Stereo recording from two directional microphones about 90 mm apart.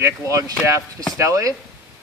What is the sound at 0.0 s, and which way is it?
Speech, 35° right (ahead or behind).